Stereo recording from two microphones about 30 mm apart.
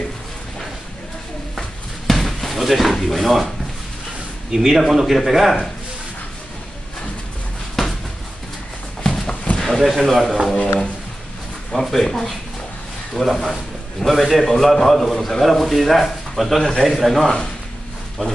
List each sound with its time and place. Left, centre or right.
2.0 s music: centre
4.5 s a man's voice: centre
7.8 s a sound: centre
9.0 s a sound: centre
9.6 s speech: centre
10.5 s speech: left
13.2 s a man's voice: centre
15.4 s a man's voice: centre